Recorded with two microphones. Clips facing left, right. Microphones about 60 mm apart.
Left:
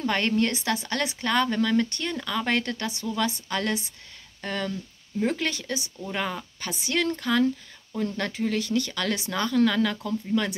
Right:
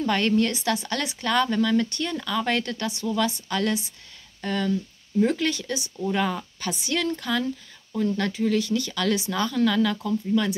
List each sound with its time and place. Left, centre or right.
0.0 s speech: left
6.1 s speech: centre
6.8 s speech: left